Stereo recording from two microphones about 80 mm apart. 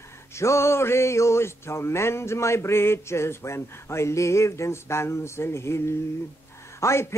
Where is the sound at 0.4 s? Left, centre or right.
Left.